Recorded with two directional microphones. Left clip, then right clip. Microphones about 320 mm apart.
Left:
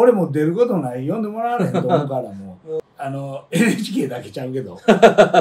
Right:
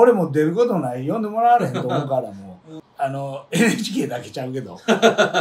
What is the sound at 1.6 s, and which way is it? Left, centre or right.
Speech, centre.